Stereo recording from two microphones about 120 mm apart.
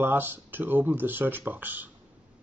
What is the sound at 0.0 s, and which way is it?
Speech, 20° right (ahead or behind).